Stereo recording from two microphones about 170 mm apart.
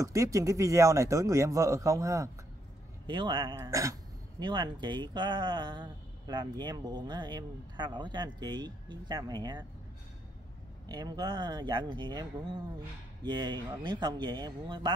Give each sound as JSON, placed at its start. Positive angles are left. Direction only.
{"t": 0.0, "sound": "speech", "side_deg": -20}
{"t": 3.1, "sound": "speech", "side_deg": -30}
{"t": 10.9, "sound": "speech", "side_deg": -25}